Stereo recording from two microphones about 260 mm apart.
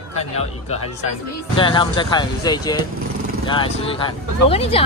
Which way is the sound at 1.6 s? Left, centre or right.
Centre.